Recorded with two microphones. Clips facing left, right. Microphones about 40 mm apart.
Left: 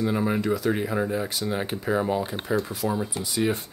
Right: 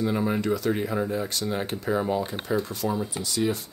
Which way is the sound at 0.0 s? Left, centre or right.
Centre.